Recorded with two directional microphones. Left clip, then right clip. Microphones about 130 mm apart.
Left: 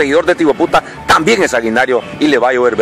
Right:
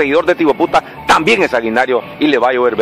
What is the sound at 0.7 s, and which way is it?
Speech, 20° left (ahead or behind).